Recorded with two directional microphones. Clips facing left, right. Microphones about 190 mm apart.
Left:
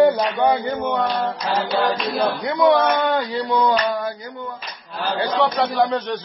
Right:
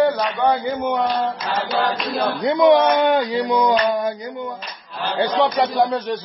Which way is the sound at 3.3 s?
20° right (ahead or behind).